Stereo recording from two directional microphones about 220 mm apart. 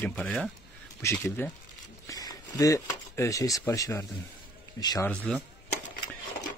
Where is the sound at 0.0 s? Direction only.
5° left (ahead or behind).